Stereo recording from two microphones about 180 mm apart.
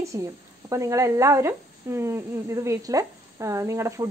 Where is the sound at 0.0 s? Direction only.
15° right (ahead or behind).